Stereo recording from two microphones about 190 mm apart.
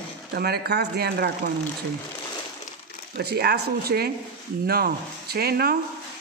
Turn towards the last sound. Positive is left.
turn(degrees=-55)  # may be behind; listen again after turning